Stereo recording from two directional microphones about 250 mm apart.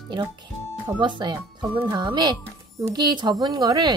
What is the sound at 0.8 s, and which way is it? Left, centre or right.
Speech, centre.